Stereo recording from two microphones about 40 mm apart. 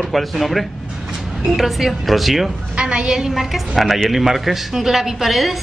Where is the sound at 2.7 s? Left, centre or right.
Right.